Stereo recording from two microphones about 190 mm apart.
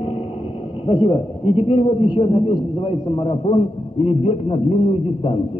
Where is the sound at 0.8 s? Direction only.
30° left (ahead or behind).